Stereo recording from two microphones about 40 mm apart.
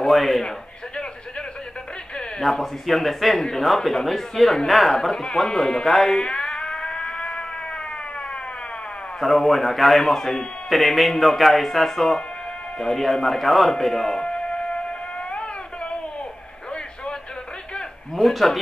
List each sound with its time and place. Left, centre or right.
0.0 s a sound: centre
2.4 s a man's voice: centre
5.1 s a sound: centre
9.2 s a man's voice: centre
14.2 s music: left
18.1 s a man's voice: centre